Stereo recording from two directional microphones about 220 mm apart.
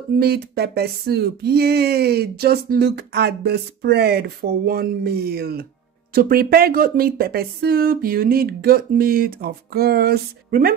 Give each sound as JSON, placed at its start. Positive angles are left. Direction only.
{"t": 0.2, "sound": "speech", "side_deg": -45}